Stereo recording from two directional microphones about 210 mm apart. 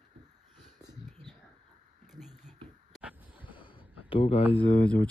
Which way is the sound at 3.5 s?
25° left (ahead or behind).